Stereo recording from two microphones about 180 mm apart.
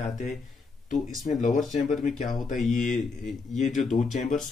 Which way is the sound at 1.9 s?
45° left (ahead or behind).